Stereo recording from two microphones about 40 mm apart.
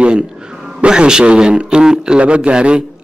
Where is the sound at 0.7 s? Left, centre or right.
Right.